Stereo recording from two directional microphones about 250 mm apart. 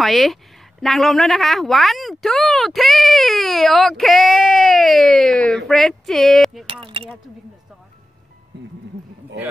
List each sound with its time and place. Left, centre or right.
0.0 s speech: centre
6.6 s keys jangling: right